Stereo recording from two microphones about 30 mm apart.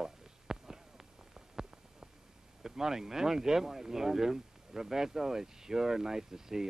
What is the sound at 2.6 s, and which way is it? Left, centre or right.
Speech, centre.